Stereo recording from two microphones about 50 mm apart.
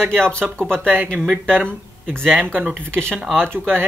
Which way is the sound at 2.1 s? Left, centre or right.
Centre.